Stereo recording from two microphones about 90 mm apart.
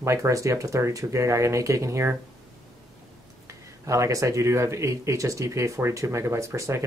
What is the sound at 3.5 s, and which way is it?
Speech, 35° right (ahead or behind).